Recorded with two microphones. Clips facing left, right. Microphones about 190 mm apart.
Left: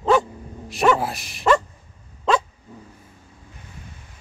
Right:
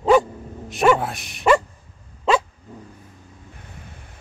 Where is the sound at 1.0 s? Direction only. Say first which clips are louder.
Left 1 dB; centre (ahead or behind).